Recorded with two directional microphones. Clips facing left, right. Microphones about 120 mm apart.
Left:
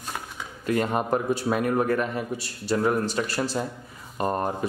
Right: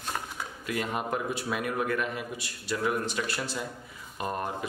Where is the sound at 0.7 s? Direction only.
40° left (ahead or behind).